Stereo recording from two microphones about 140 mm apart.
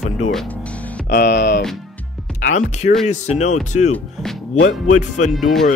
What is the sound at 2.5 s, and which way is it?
Speech, 60° left (ahead or behind).